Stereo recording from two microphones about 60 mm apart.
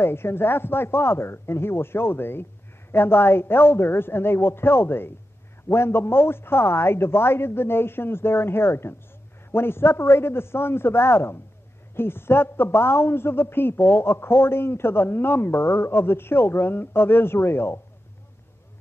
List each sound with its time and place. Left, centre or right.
0.0 s a man's voice: left